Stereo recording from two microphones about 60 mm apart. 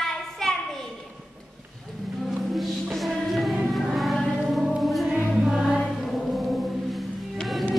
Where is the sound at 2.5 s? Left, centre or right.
Centre.